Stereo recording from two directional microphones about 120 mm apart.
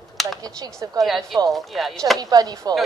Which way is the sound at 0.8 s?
30° right (ahead or behind).